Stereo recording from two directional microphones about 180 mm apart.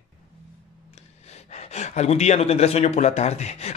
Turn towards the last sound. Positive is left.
turn(degrees=35)  # may be behind; listen again after turning